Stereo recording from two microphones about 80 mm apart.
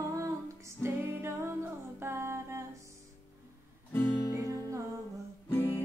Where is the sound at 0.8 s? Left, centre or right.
Right.